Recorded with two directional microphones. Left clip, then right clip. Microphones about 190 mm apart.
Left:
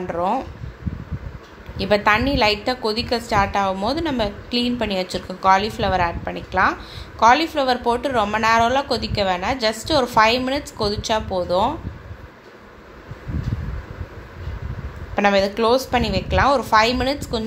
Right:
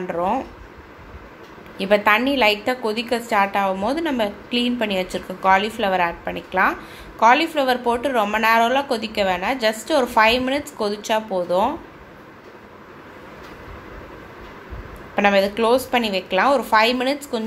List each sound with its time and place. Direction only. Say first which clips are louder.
0.1 s a woman's voice: even; 5° left (ahead or behind)
1.8 s a woman's voice: right 1 dB; 10° left (ahead or behind)
15.1 s a woman's voice: even; 5° left (ahead or behind)